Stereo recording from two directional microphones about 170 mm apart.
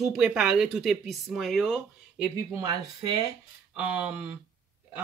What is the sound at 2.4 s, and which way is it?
Speech, 15° right (ahead or behind).